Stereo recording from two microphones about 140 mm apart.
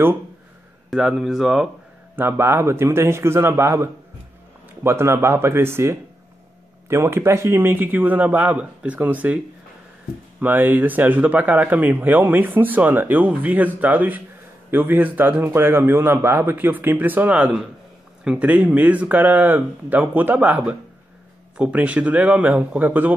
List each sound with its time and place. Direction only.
0.8 s speech: 5° right (ahead or behind)
2.1 s speech: 15° right (ahead or behind)
10.4 s speech: 15° right (ahead or behind)